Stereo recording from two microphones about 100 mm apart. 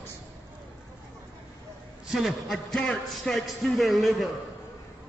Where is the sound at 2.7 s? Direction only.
10° left (ahead or behind).